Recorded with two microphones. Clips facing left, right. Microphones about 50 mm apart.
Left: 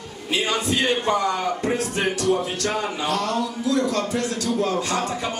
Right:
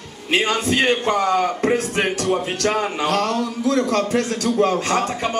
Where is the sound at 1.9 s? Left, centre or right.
Centre.